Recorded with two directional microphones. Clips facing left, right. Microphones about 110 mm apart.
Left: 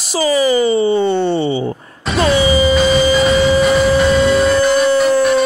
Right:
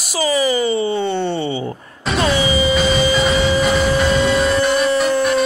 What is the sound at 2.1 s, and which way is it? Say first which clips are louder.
Music: left 4 dB; centre (ahead or behind).